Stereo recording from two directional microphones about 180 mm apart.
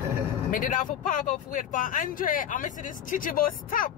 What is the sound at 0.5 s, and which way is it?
Speech, 45° left (ahead or behind).